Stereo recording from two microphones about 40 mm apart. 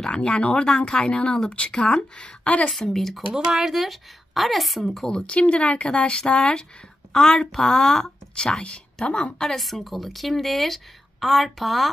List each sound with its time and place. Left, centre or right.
0.0 s speech: left
0.7 s speech: centre
2.7 s a woman's voice: centre
3.3 s speech: centre
3.7 s speech: centre
5.2 s speech: left
8.5 s speech: left
9.4 s speech: centre